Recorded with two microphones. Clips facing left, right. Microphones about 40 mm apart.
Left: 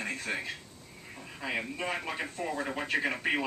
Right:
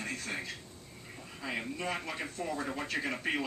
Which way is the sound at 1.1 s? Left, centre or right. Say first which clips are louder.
Left 3 dB; left.